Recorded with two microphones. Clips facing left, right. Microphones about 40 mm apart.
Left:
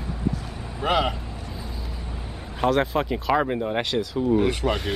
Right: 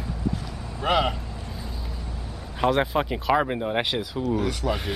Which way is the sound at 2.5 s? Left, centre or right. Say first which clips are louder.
Left 1 dB; centre.